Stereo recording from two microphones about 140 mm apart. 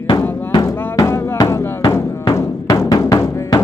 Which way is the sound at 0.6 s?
15° left (ahead or behind).